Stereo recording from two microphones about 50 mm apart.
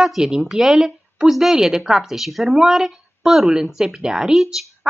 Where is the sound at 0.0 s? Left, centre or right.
Centre.